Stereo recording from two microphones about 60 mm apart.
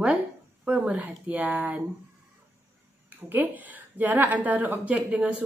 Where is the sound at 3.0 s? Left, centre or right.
Right.